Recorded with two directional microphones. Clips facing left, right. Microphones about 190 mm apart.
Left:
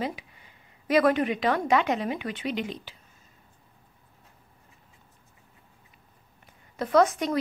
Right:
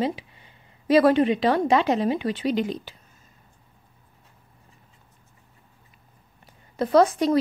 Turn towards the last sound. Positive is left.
turn(degrees=-30)  # may be behind; listen again after turning